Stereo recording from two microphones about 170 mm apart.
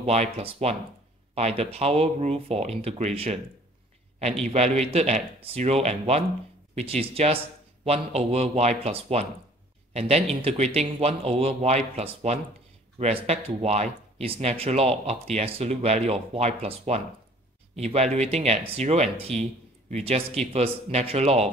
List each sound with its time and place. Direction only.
0.0 s a man's voice: 40° right (ahead or behind)
4.5 s a man's voice: 40° right (ahead or behind)